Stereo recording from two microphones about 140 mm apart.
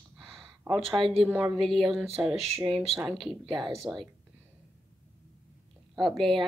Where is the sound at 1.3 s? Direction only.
10° right (ahead or behind).